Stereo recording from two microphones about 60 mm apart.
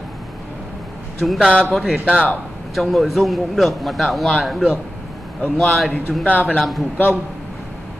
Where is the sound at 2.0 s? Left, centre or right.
Left.